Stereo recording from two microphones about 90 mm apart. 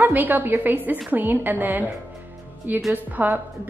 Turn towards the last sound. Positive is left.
turn(degrees=-20)  # may be behind; listen again after turning